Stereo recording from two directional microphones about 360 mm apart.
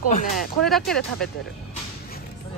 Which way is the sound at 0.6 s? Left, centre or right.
Centre.